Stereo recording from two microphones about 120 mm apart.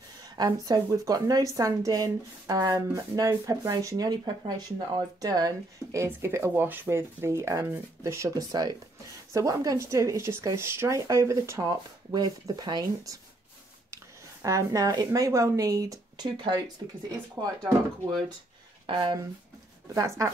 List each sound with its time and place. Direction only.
0.4 s speech: 30° right (ahead or behind)
14.4 s speech: 30° right (ahead or behind)
18.9 s speech: 45° right (ahead or behind)
19.9 s speech: 30° right (ahead or behind)